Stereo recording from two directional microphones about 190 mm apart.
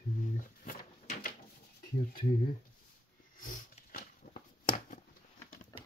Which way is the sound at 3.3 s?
45° left (ahead or behind).